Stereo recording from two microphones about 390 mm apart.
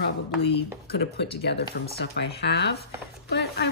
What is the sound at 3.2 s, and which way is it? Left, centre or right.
Chopping, left.